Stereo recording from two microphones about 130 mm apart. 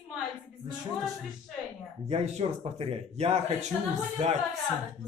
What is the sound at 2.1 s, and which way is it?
Speech, 55° right (ahead or behind).